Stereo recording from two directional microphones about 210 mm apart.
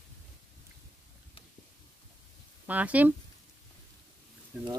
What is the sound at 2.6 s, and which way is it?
Speech, 5° right (ahead or behind).